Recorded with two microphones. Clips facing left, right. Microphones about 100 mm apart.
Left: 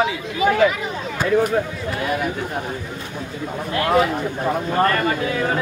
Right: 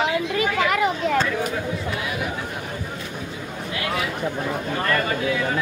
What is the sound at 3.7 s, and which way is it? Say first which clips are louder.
Speech: left 9 dB; 45° left (ahead or behind).